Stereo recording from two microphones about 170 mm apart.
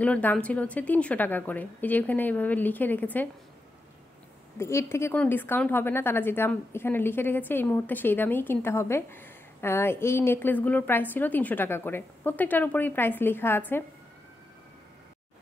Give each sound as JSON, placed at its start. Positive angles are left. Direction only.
{"t": 0.0, "sound": "a woman's voice", "side_deg": 10}
{"t": 4.6, "sound": "a woman's voice", "side_deg": 15}